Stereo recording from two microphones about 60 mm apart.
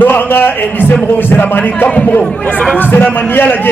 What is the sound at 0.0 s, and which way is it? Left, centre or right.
A man's voice, left.